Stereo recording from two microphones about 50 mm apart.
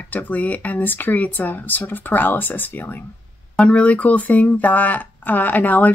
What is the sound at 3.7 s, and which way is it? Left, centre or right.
Speech, left.